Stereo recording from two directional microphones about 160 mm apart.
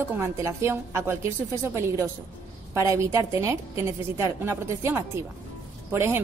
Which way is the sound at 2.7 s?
20° right (ahead or behind).